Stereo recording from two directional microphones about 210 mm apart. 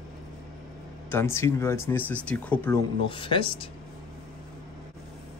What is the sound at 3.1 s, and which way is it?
Speech, 25° left (ahead or behind).